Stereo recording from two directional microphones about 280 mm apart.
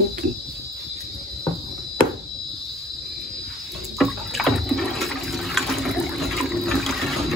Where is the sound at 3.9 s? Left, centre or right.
Centre.